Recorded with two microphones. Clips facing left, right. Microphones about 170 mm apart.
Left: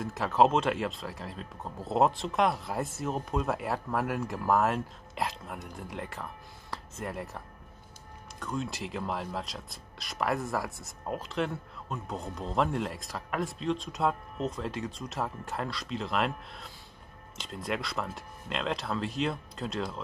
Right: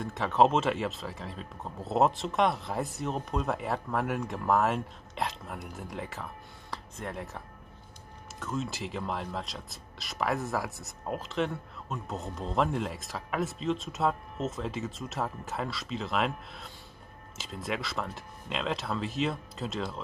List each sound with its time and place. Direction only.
0.0 s speech: centre (ahead or behind)